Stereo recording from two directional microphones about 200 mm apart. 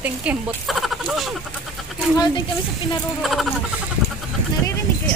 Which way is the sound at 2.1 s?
20° left (ahead or behind).